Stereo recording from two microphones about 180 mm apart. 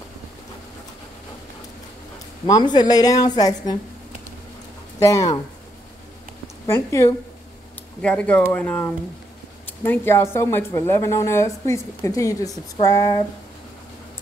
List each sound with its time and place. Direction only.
2.4 s a woman's voice: 20° left (ahead or behind)
5.0 s a woman's voice: 15° left (ahead or behind)
6.7 s a woman's voice: 15° left (ahead or behind)